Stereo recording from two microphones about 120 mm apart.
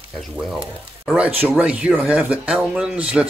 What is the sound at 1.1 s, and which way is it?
Speech, 10° right (ahead or behind).